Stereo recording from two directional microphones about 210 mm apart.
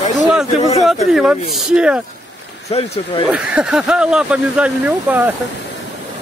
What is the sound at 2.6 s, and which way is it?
Speech, 30° left (ahead or behind).